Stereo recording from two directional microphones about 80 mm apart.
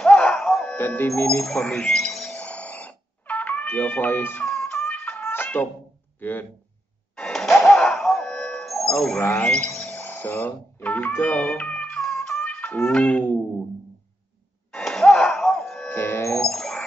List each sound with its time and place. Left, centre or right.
0.0 s music: centre
0.7 s speech: left
1.4 s a sound: centre; by 4.5 s left
4.6 s music: centre
6.1 s speech: left
7.2 s music: centre
9.2 s speech: centre
11.1 s cat: left
12.8 s a sound: centre
14.7 s a sound: centre
15.9 s music: left
16.4 s bird: centre